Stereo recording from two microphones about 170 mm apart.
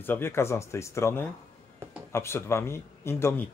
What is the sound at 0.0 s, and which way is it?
Speech, 15° left (ahead or behind).